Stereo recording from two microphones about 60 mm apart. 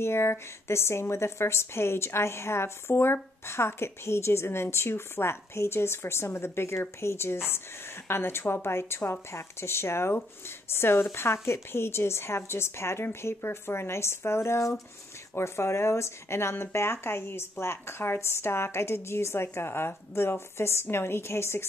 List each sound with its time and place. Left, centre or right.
0.0 s a woman's voice: left